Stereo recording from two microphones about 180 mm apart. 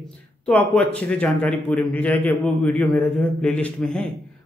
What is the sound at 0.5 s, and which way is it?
A man's voice, 5° left (ahead or behind).